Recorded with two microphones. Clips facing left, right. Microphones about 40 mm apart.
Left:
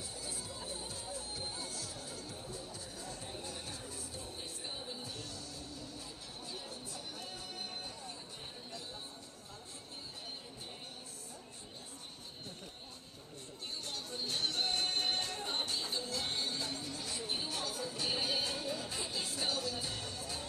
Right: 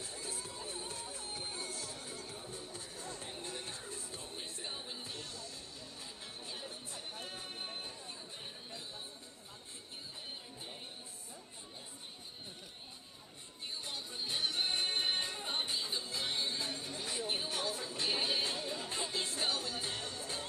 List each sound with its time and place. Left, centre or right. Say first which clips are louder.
0.0 s music: right 1 dB; right
6.4 s music: left 1 dB; right
13.8 s music: left 1 dB; centre; by 20.4 s right